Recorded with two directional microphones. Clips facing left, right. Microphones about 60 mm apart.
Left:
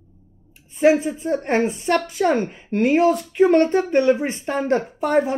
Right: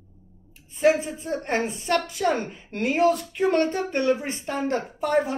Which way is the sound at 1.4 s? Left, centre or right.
Left.